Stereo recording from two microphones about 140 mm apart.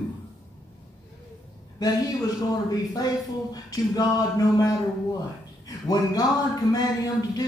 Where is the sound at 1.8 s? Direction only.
25° left (ahead or behind).